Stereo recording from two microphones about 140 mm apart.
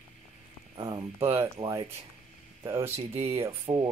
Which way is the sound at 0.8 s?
30° right (ahead or behind).